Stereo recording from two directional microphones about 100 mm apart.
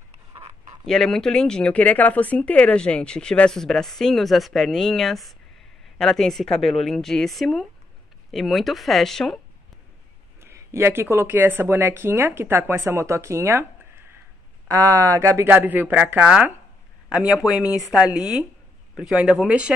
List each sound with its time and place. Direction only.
0.8 s speech: 5° left (ahead or behind)
10.4 s speech: 25° right (ahead or behind)
14.7 s speech: 35° right (ahead or behind)
15.4 s speech: 15° right (ahead or behind)